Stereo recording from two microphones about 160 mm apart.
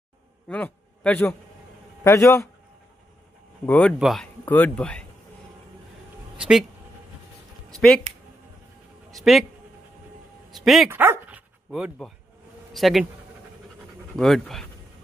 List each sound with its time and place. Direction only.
0.5 s a man's voice: 10° left (ahead or behind)
3.6 s speech: 10° left (ahead or behind)
6.3 s speech: 5° right (ahead or behind)
9.1 s speech: centre (ahead or behind)
10.5 s speech: centre (ahead or behind)
10.9 s dog: 15° right (ahead or behind)
12.7 s speech: centre (ahead or behind)
14.1 s speech: centre (ahead or behind)